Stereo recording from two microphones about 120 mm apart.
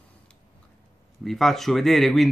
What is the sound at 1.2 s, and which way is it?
Speech, centre (ahead or behind).